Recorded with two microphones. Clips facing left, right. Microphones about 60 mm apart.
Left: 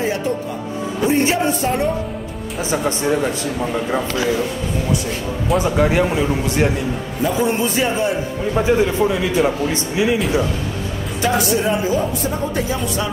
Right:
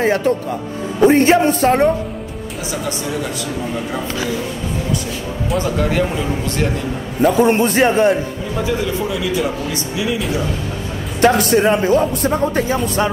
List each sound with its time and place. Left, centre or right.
0.0 s a man's voice: right
2.7 s speech: left
5.6 s a man's voice: centre
7.2 s a man's voice: right
8.5 s a man's voice: left
11.1 s a man's voice: right